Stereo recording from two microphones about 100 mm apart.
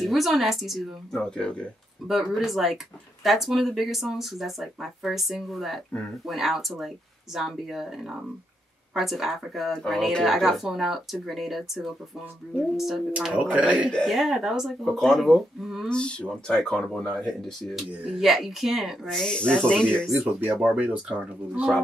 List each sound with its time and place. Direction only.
0.0 s a woman's voice: centre (ahead or behind)
2.0 s a woman's voice: centre (ahead or behind)
13.1 s speech: 10° right (ahead or behind)
13.9 s a woman's voice: centre (ahead or behind)
15.9 s a woman's voice: 10° left (ahead or behind)
20.2 s speech: 20° right (ahead or behind)